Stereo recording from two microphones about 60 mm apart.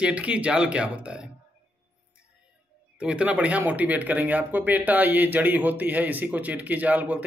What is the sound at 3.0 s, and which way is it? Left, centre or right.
Speech, centre.